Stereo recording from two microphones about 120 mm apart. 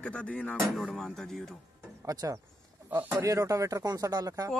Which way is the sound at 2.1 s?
30° right (ahead or behind).